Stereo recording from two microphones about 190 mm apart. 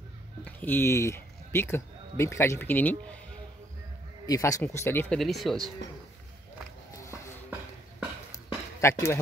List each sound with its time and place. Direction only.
0.5 s speech: 10° left (ahead or behind)
4.3 s speech: 15° left (ahead or behind); by 5.6 s centre (ahead or behind)
5.8 s speech: 70° left (ahead or behind)
8.3 s a sound: 15° left (ahead or behind)